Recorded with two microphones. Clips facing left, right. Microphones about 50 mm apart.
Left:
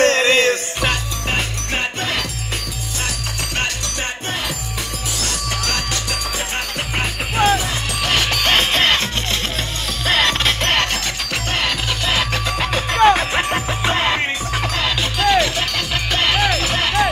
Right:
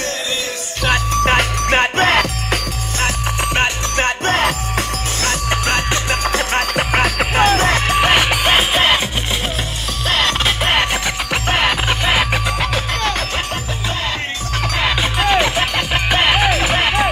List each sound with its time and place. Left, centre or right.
0.0 s music: left
1.1 s music: right
4.0 s music: right
5.2 s music: right
6.5 s music: right
7.9 s music: right
8.2 s music: centre
10.0 s music: centre
11.5 s music: right
12.4 s music: centre
13.5 s music: left
14.8 s music: centre